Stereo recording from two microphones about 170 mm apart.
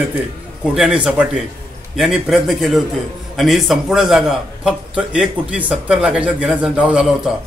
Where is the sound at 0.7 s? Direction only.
5° right (ahead or behind).